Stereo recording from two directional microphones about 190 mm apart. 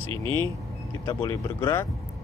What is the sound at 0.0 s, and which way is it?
Speech, 25° right (ahead or behind).